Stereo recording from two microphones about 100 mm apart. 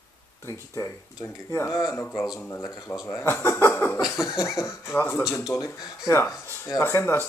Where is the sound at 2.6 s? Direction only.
40° left (ahead or behind).